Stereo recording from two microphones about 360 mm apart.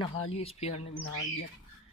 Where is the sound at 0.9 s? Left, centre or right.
Left.